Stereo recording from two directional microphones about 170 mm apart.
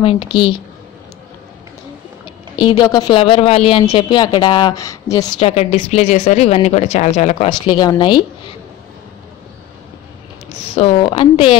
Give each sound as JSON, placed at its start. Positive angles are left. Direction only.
{"t": 0.0, "sound": "a woman's voice", "side_deg": 35}
{"t": 2.5, "sound": "speech", "side_deg": 25}
{"t": 5.4, "sound": "a woman's voice", "side_deg": 35}
{"t": 7.4, "sound": "speech", "side_deg": 25}
{"t": 10.7, "sound": "a woman's voice", "side_deg": 35}